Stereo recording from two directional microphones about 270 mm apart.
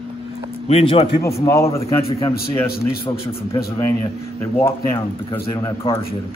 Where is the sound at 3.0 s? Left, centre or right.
Centre.